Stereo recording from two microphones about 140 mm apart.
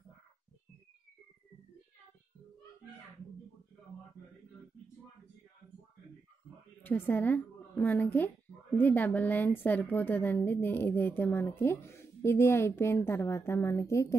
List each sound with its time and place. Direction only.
6.8 s a woman's voice: 15° left (ahead or behind)